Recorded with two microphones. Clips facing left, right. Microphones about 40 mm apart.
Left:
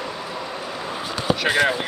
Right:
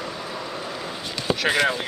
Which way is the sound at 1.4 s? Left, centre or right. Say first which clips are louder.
Left 1 dB; centre.